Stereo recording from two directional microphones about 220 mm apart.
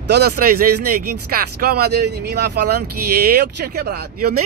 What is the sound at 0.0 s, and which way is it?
Speech, 50° right (ahead or behind).